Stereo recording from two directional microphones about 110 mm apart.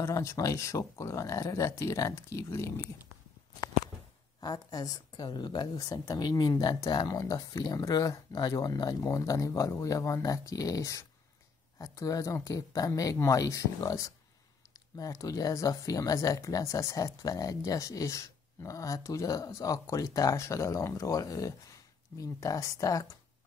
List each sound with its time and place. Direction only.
0.0 s speech: 25° left (ahead or behind)
4.4 s speech: 40° left (ahead or behind)